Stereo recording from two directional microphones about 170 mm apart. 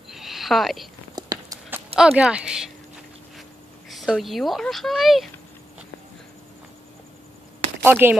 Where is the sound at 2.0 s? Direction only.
5° right (ahead or behind).